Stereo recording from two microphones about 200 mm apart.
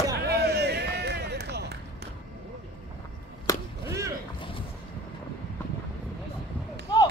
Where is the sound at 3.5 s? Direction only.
15° left (ahead or behind).